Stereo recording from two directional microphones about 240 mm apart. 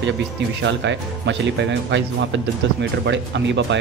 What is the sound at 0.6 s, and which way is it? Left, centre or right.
Speech, right.